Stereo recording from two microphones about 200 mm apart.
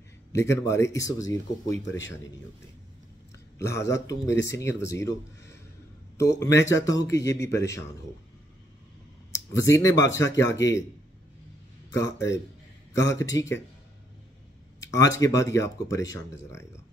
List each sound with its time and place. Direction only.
0.3 s speech: 15° left (ahead or behind)
3.6 s speech: 60° left (ahead or behind)
3.9 s speech: 15° left (ahead or behind)
6.1 s speech: 15° left (ahead or behind)
9.5 s speech: 15° left (ahead or behind)
11.9 s speech: 15° left (ahead or behind)
15.0 s speech: 15° left (ahead or behind)